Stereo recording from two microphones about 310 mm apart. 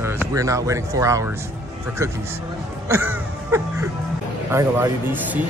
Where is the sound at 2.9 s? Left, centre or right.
Centre.